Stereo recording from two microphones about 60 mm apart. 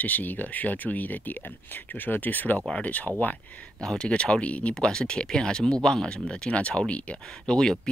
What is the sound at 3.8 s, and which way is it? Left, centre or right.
Speech, centre.